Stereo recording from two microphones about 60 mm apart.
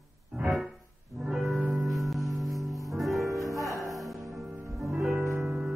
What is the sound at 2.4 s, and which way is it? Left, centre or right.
Music, right.